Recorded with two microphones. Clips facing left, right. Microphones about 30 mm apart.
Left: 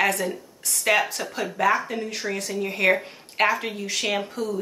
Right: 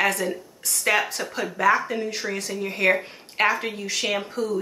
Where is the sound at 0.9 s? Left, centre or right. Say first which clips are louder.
Left 1 dB; centre.